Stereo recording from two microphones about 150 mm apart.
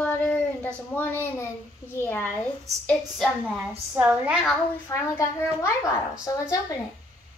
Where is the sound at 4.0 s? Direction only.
10° right (ahead or behind).